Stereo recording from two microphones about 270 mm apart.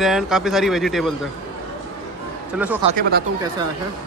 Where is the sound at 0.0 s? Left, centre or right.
Centre.